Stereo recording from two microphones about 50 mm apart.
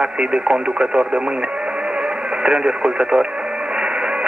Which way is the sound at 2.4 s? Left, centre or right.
Right.